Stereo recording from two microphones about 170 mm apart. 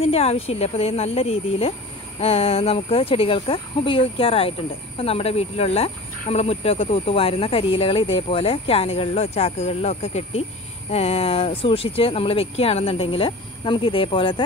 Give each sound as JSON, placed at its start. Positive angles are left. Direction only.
{"t": 0.0, "sound": "speech", "side_deg": 35}